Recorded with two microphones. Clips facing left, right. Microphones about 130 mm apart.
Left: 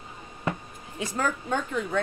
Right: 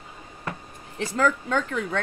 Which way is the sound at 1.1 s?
90° right.